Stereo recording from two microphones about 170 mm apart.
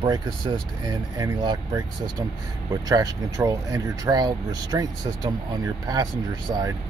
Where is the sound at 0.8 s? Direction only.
20° right (ahead or behind).